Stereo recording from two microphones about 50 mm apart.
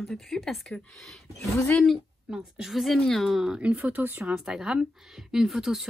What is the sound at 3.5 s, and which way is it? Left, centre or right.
Speech, right.